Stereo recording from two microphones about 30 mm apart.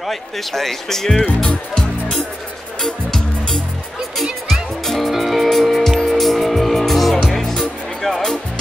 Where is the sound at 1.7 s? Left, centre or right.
Centre.